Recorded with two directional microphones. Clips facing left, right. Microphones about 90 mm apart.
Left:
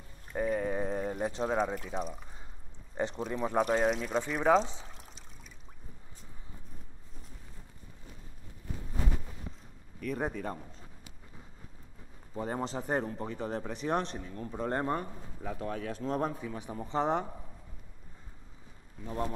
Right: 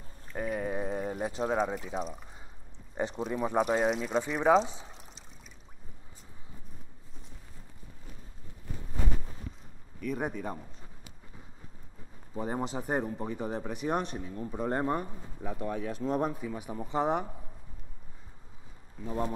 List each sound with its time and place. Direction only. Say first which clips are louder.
0.4 s speech: left 2 dB; 5° right (ahead or behind)
3.2 s a man's voice: right 2 dB; 10° right (ahead or behind)
4.6 s a man's voice: right 1 dB; 15° right (ahead or behind)
10.0 s a man's voice: right 1 dB; 5° right (ahead or behind)
12.4 s a man's voice: right 1 dB; 10° right (ahead or behind)
19.0 s a man's voice: right 2 dB; 15° right (ahead or behind)